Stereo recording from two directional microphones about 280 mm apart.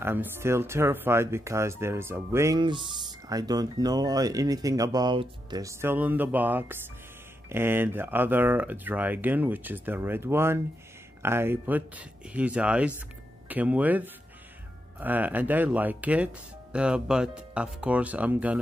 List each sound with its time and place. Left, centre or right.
0.0 s speech: centre